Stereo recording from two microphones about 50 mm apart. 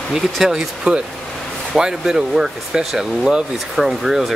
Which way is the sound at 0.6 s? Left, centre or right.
Centre.